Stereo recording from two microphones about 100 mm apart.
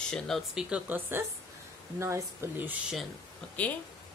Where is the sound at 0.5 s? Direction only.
10° right (ahead or behind).